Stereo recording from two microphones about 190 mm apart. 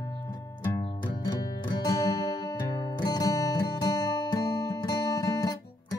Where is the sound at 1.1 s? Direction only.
20° left (ahead or behind).